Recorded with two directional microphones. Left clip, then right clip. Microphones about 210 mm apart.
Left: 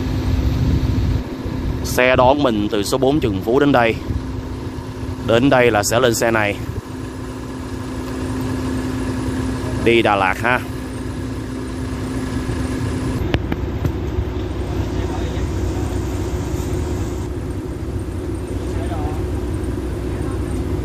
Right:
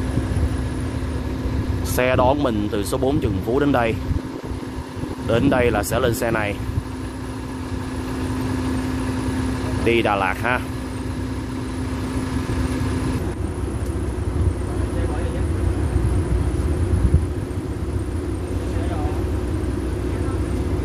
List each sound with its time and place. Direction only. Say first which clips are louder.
2.0 s speech: left 5 dB; 10° left (ahead or behind)
5.3 s speech: left 5 dB; 20° left (ahead or behind)
9.8 s speech: left 4 dB; 15° left (ahead or behind)